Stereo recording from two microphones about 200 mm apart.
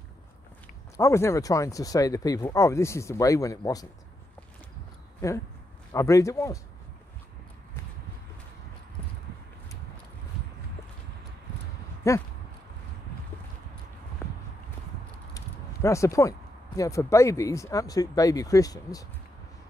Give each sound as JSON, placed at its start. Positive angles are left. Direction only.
{"t": 0.9, "sound": "speech", "side_deg": 15}
{"t": 5.2, "sound": "speech", "side_deg": 15}
{"t": 12.1, "sound": "speech", "side_deg": 15}
{"t": 15.3, "sound": "speech", "side_deg": 15}